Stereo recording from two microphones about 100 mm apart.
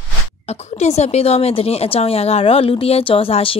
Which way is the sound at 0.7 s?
90° left.